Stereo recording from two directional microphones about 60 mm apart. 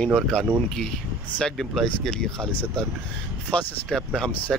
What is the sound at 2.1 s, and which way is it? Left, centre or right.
Speech, centre.